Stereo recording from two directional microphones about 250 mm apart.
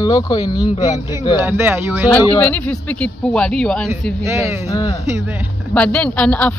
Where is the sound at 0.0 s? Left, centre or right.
Centre.